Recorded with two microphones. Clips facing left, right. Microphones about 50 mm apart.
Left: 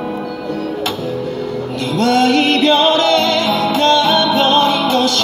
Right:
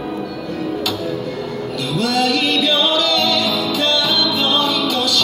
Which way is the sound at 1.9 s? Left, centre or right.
Left.